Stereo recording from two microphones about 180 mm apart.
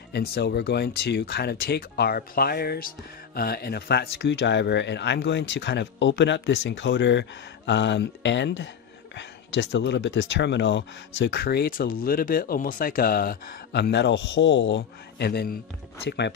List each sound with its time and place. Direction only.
0.1 s speech: 60° left (ahead or behind)
16.1 s speech: 70° left (ahead or behind)